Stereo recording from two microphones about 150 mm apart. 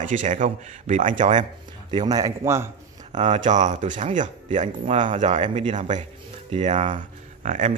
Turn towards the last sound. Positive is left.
turn(degrees=-55)  # may be behind; listen again after turning